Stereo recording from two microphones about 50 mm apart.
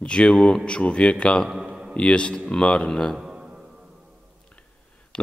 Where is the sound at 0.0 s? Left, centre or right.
Left.